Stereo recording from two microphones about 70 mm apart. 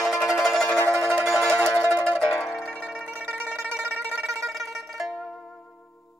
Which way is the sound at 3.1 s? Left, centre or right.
Right.